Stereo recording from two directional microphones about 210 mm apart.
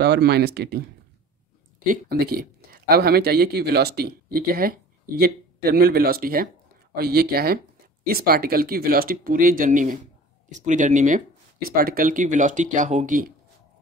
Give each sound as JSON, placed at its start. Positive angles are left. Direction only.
{"t": 0.0, "sound": "speech", "side_deg": -50}
{"t": 1.9, "sound": "speech", "side_deg": -45}